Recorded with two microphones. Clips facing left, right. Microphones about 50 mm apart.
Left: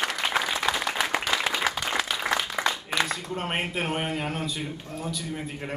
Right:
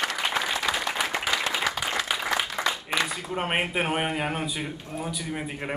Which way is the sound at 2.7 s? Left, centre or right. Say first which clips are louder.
Even; centre.